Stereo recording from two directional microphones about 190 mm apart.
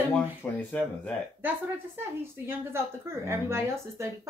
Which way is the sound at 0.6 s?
5° left (ahead or behind).